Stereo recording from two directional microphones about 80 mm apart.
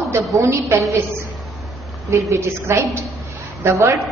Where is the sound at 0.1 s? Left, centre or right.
Right.